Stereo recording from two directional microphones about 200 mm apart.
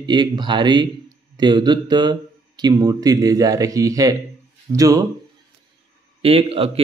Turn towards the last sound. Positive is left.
turn(degrees=-30)  # may be behind; listen again after turning